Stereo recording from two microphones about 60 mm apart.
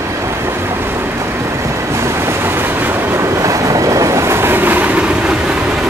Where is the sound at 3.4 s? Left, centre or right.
Right.